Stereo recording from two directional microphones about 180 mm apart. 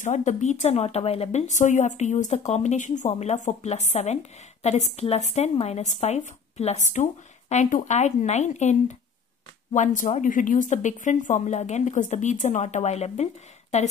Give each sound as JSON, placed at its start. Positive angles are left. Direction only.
{"t": 0.0, "sound": "a woman's voice", "side_deg": 40}